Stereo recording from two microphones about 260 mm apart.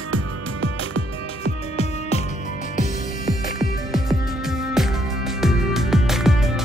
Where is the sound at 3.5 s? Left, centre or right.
Centre.